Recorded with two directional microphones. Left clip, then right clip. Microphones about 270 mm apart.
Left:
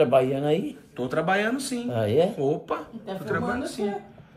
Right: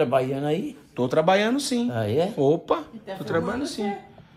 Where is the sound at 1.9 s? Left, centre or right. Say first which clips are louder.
Left 4 dB; centre.